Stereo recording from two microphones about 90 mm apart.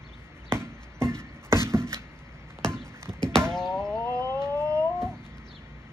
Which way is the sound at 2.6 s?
5° left (ahead or behind).